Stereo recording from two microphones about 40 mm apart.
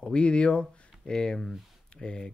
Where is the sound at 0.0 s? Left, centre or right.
Left.